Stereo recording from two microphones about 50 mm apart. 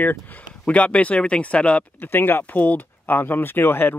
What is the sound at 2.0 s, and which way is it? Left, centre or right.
Speech, left.